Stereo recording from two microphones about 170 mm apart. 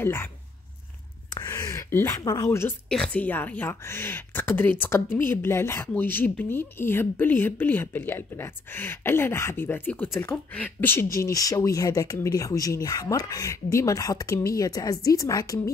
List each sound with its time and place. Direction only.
0.0 s a woman's voice: 15° left (ahead or behind)
1.3 s a sound: 15° left (ahead or behind)
2.9 s a woman's voice: 5° left (ahead or behind)